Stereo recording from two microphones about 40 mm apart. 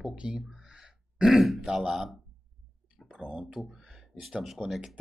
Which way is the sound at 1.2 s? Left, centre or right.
Centre.